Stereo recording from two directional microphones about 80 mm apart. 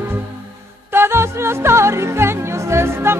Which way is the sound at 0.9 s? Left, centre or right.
Right.